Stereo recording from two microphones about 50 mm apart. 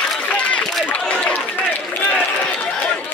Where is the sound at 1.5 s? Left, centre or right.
Left.